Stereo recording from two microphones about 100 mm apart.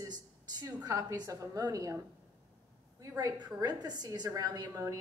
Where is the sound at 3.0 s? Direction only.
35° right (ahead or behind).